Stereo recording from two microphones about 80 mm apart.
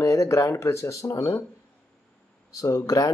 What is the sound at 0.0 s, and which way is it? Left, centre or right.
Speech, left.